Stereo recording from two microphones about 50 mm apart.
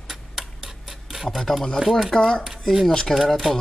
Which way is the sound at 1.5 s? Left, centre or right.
Centre.